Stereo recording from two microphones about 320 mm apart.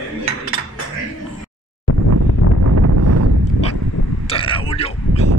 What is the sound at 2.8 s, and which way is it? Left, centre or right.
Wind noise, right.